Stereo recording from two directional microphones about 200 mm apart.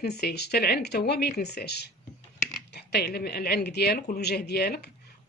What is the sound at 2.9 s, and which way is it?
Speech, 55° left (ahead or behind).